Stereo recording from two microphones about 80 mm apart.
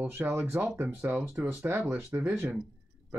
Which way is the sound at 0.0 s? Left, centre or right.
Right.